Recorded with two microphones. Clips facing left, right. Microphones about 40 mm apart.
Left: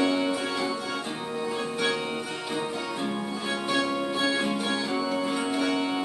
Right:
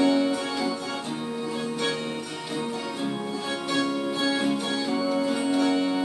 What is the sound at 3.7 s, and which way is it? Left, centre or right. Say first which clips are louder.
Music: right 1 dB; centre.